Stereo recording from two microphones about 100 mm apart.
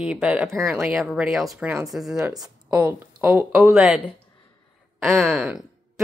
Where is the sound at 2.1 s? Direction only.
35° right (ahead or behind).